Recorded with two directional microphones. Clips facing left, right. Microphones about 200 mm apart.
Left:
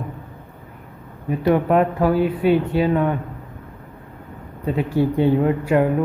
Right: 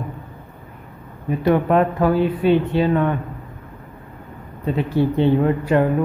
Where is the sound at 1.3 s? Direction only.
10° left (ahead or behind).